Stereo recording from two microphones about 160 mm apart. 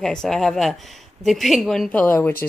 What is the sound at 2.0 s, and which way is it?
Speech, 15° left (ahead or behind).